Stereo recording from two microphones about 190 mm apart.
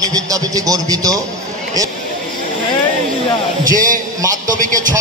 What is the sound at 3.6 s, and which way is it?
A man's voice, 45° right (ahead or behind).